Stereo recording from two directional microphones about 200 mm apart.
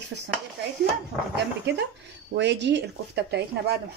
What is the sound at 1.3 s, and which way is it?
Speech, 60° right (ahead or behind).